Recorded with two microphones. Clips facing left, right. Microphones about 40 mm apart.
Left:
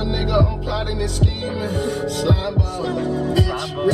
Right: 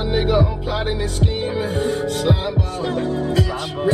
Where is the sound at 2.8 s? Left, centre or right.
Right.